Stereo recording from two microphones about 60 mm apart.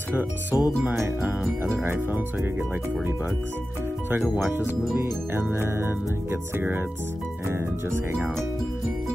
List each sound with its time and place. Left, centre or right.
0.1 s speech: right
4.9 s speech: right
7.4 s speech: right